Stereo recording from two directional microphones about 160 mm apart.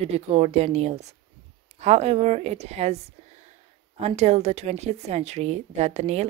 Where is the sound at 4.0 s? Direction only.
40° right (ahead or behind).